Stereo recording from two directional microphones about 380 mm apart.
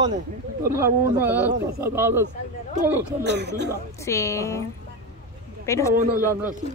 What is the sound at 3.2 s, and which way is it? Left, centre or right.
Speech, right.